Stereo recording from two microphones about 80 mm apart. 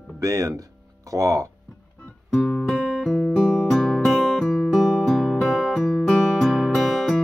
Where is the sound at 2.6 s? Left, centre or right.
Centre.